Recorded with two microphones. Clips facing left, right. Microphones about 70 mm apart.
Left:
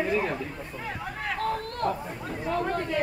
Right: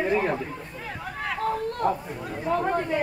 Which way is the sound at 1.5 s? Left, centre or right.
Centre.